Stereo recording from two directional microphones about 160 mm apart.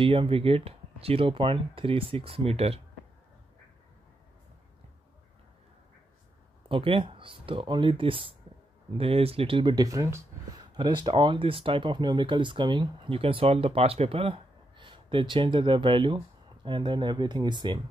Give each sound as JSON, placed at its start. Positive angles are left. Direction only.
{"t": 0.0, "sound": "speech", "side_deg": -35}
{"t": 6.7, "sound": "speech", "side_deg": -35}